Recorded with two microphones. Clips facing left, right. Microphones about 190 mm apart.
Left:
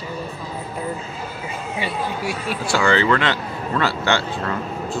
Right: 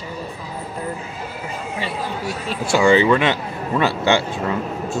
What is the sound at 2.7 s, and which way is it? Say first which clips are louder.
Speech: right 4 dB; 20° right (ahead or behind).